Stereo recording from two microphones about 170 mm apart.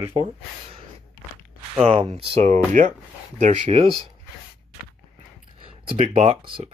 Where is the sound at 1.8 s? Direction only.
35° right (ahead or behind).